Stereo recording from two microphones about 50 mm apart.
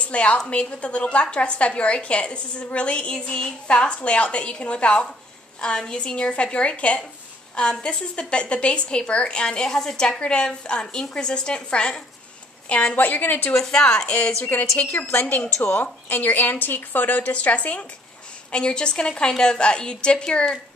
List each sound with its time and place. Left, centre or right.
0.0 s a woman's voice: left
12.9 s speech: left
13.5 s a woman's voice: centre
15.0 s a woman's voice: left
15.4 s a woman's voice: left; by 20.2 s centre